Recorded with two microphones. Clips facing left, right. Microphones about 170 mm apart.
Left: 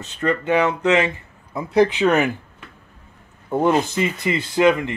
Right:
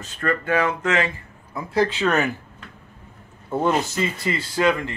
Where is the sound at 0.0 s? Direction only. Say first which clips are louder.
Left 3 dB; 20° left (ahead or behind).